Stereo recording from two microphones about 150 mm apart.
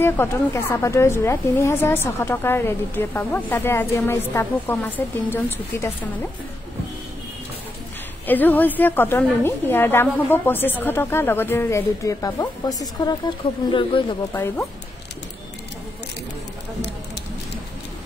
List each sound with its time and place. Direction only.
0.0 s a woman's voice: 15° left (ahead or behind)
8.3 s a woman's voice: 10° left (ahead or behind); by 14.1 s 30° left (ahead or behind)
14.3 s a woman's voice: 15° left (ahead or behind)